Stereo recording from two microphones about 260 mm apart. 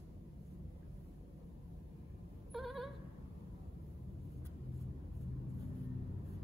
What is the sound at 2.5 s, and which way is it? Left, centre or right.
Bleat, centre.